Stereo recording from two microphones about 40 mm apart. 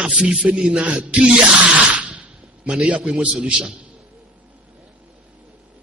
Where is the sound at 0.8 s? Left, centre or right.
Right.